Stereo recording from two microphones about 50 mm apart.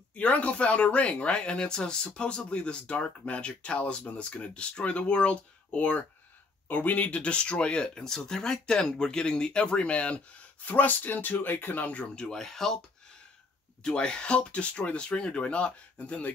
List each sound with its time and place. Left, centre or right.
0.1 s speech: left; by 12.7 s centre
13.8 s speech: centre